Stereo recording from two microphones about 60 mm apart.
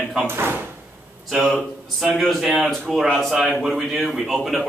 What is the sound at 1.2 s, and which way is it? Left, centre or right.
A man's voice, centre.